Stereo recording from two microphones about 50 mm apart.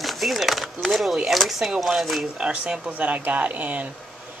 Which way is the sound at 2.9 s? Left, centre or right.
Right.